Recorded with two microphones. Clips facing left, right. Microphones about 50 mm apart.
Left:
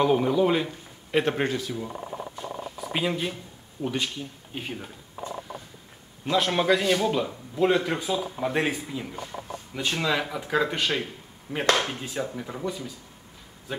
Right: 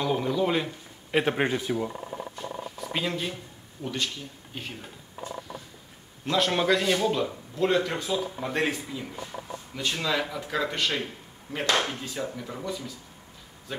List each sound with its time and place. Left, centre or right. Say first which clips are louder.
0.0 s a man's voice: left 5 dB; centre
0.5 s speech: left 2 dB; centre; by 1.9 s right
2.9 s a man's voice: left 3 dB; centre
6.2 s a man's voice: left 1 dB; centre; by 12.1 s left
12.4 s a man's voice: left 2 dB; centre